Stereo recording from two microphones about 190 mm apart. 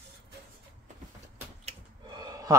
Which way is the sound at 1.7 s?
25° right (ahead or behind).